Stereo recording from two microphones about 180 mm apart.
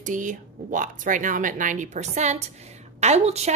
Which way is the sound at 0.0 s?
45° right (ahead or behind).